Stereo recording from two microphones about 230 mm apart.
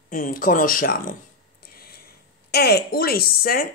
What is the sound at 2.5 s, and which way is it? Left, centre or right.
Speech, left.